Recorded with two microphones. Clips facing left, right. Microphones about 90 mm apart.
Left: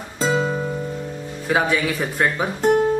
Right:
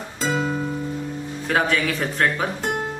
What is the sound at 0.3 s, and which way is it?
Music, 15° left (ahead or behind).